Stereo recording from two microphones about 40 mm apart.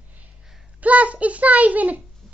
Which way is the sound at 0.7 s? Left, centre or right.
Right.